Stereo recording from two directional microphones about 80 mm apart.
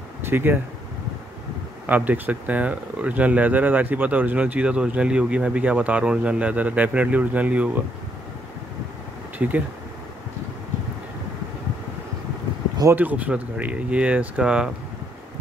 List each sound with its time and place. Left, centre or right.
0.2 s speech: right
1.9 s speech: right
9.4 s speech: centre
12.9 s speech: centre